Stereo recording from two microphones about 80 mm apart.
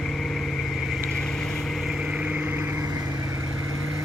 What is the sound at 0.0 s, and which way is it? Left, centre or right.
Vehicle, centre.